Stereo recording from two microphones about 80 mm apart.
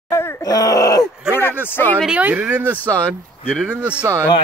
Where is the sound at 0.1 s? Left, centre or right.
Left.